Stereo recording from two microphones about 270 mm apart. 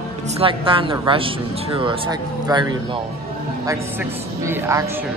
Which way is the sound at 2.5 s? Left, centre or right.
Centre.